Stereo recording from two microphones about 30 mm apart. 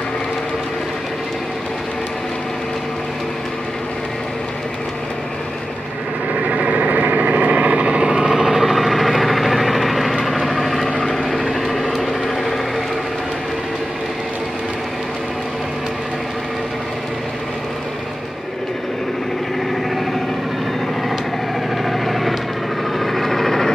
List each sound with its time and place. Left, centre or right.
6.5 s vehicle: right
8.5 s vehicle: centre
10.9 s vehicle: left
11.7 s vehicle: centre
21.8 s vehicle: centre